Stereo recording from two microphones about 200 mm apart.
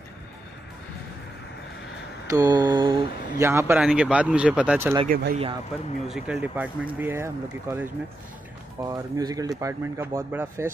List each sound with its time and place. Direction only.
2.3 s speech: 15° right (ahead or behind)
5.0 s speech: 45° right (ahead or behind)
6.0 s speech: 5° right (ahead or behind)